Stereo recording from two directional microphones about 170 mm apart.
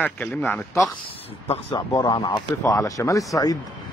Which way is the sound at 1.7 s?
25° left (ahead or behind).